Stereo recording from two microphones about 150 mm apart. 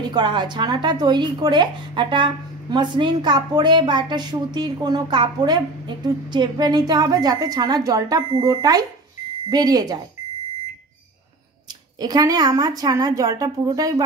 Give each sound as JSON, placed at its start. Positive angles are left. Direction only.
{"t": 0.1, "sound": "speech", "side_deg": -30}
{"t": 12.0, "sound": "speech", "side_deg": -25}